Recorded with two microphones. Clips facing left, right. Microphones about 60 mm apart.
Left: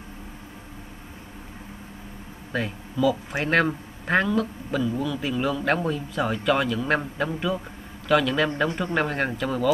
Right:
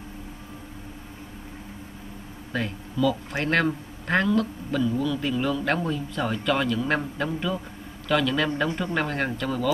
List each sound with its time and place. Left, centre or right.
2.5 s a man's voice: centre